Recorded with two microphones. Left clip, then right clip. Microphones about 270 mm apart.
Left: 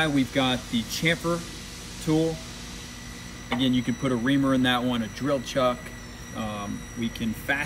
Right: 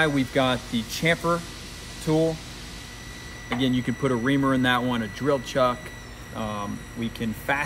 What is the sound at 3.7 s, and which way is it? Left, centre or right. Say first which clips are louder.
Speech: right 1 dB; right.